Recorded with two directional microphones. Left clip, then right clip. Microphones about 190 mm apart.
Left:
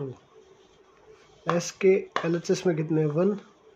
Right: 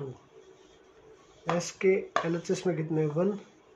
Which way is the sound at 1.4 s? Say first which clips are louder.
Left 4 dB; 35° left (ahead or behind).